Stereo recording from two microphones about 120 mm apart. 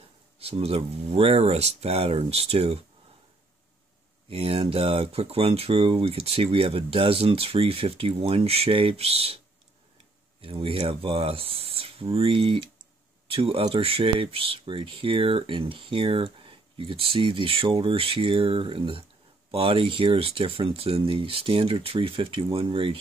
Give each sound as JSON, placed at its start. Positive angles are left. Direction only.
{"t": 0.4, "sound": "speech", "side_deg": -55}
{"t": 4.3, "sound": "speech", "side_deg": -55}
{"t": 10.4, "sound": "speech", "side_deg": -50}